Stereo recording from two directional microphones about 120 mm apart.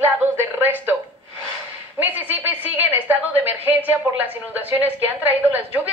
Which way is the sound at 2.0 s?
15° right (ahead or behind).